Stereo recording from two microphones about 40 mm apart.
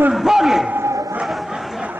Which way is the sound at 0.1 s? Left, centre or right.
Centre.